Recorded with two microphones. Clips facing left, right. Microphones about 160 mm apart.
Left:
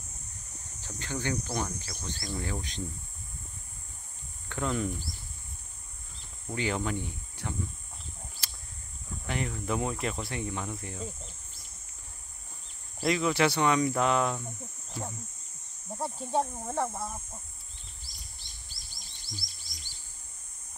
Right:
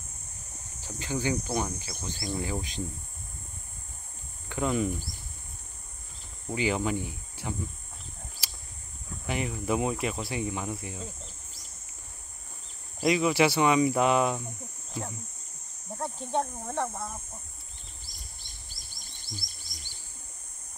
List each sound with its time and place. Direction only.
0.7 s speech: 10° right (ahead or behind)
4.5 s speech: 10° right (ahead or behind)
6.5 s speech: 10° right (ahead or behind)
9.2 s speech: 10° right (ahead or behind)
13.0 s speech: 10° right (ahead or behind)
16.0 s speech: 5° left (ahead or behind)
18.0 s bird: 50° right (ahead or behind)